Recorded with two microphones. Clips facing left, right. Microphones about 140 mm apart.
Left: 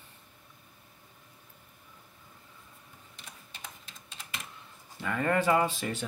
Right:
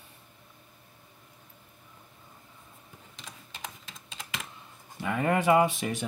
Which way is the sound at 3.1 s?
90° right.